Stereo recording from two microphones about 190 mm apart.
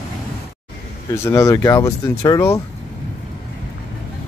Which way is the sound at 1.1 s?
15° left (ahead or behind).